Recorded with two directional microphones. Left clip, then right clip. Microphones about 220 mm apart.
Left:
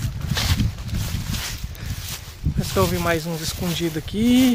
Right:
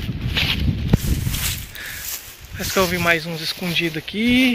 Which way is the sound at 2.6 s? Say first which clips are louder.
Right 3 dB; 5° left (ahead or behind).